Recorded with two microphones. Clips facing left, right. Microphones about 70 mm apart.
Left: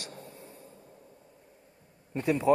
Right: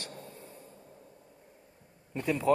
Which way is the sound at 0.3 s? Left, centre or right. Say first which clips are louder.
Even; left.